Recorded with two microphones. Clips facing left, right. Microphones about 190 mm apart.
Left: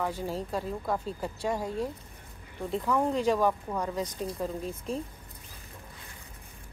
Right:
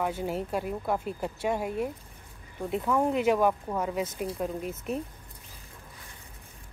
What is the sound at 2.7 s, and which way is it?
Speech, 5° right (ahead or behind).